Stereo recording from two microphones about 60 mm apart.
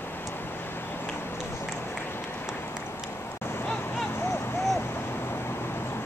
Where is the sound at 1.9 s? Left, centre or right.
Left.